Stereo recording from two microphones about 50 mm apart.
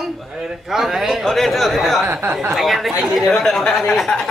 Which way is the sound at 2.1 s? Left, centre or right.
Right.